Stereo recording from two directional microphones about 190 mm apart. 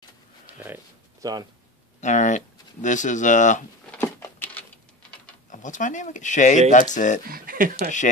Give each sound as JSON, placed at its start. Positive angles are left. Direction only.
{"t": 0.6, "sound": "speech", "side_deg": -10}
{"t": 2.0, "sound": "speech", "side_deg": 40}
{"t": 3.9, "sound": "a sound", "side_deg": 10}
{"t": 5.5, "sound": "speech", "side_deg": 40}
{"t": 7.2, "sound": "speech", "side_deg": -50}